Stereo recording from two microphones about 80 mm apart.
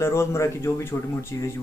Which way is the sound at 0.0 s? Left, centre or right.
Left.